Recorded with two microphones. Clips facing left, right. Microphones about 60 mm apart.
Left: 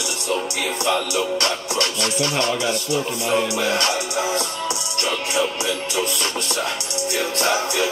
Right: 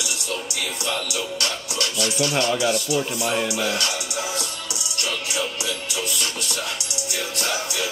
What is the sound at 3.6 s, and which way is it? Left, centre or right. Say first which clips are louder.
Music: left 4 dB; left.